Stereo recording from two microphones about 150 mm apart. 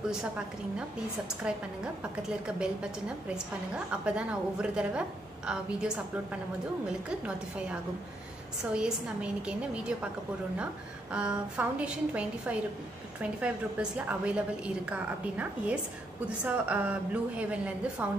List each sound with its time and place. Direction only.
2.2 s a woman's voice: 5° right (ahead or behind)
8.7 s a woman's voice: 5° right (ahead or behind)